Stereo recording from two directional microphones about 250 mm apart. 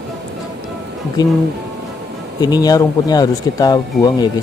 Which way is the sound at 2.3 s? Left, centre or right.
Centre.